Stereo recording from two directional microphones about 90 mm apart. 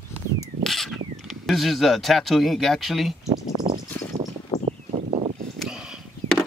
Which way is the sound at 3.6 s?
50° right (ahead or behind).